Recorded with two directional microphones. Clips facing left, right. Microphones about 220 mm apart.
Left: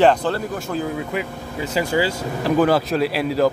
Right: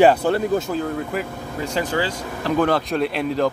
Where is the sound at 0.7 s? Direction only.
Centre (ahead or behind).